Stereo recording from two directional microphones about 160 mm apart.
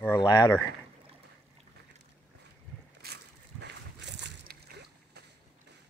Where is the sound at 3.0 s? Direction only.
90° right.